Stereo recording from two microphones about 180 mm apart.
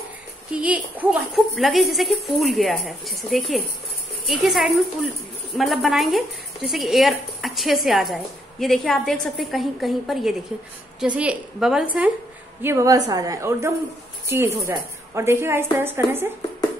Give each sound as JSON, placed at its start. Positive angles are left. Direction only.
{"t": 0.5, "sound": "a woman's voice", "side_deg": -10}
{"t": 12.6, "sound": "a woman's voice", "side_deg": -20}